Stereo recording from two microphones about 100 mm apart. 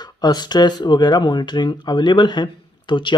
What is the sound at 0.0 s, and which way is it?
Speech, 45° left (ahead or behind).